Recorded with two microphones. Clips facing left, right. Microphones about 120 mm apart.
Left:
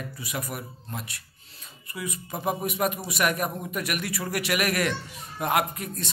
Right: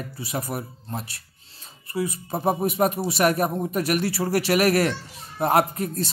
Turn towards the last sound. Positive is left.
turn(degrees=-35)  # may be behind; listen again after turning